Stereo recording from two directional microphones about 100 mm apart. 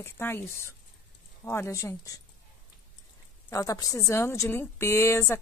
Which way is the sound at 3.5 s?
35° left (ahead or behind).